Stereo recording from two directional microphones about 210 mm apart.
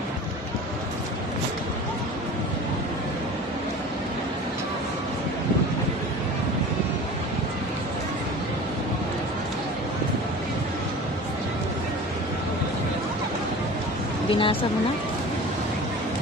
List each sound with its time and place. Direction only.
14.3 s speech: 25° left (ahead or behind)